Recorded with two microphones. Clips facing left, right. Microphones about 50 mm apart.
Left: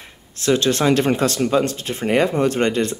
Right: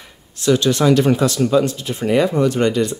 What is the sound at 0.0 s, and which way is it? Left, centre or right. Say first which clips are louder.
Speech: right 3 dB; left.